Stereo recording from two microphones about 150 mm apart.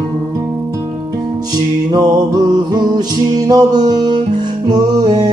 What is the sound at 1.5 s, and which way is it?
Music, 25° right (ahead or behind).